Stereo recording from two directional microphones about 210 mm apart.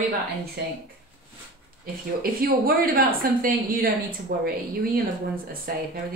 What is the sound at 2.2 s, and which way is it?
Speech, 45° right (ahead or behind).